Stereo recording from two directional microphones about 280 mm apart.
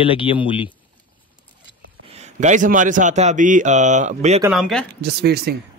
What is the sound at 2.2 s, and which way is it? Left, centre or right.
A man's voice, right.